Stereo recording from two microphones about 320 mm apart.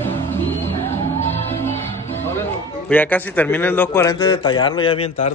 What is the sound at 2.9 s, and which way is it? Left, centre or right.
A man's voice, centre.